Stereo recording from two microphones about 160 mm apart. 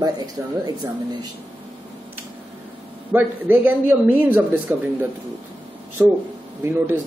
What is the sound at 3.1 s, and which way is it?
Speech, 10° right (ahead or behind).